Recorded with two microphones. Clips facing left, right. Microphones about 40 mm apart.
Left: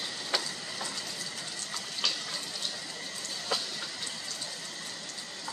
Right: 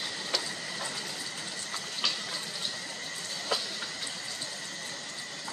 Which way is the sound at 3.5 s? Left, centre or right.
Centre.